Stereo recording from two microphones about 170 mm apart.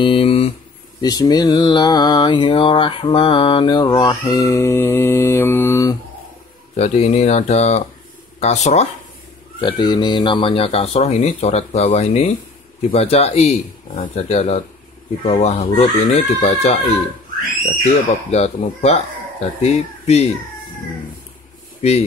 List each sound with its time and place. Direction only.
0.0 s a sound: 35° left (ahead or behind)
1.0 s mantra: 25° left (ahead or behind)
6.8 s speech: 40° left (ahead or behind)
9.6 s speech: 25° left (ahead or behind)
18.3 s speech: 40° left (ahead or behind)